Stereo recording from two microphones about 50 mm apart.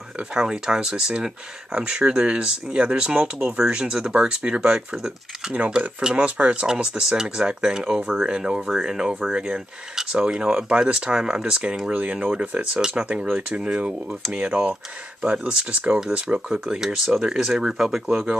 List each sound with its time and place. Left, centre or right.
0.3 s speech: centre
11.9 s speech: right; by 18.0 s centre